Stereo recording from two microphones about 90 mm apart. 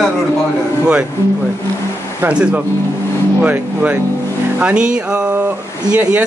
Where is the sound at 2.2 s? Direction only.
15° right (ahead or behind).